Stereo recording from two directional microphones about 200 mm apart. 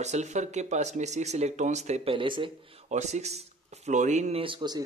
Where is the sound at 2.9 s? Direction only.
35° right (ahead or behind).